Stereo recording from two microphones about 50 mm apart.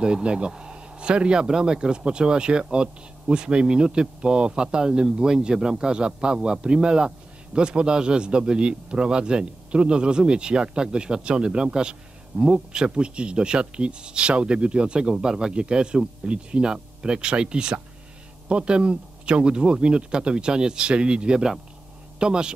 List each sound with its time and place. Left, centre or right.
0.0 s speech: right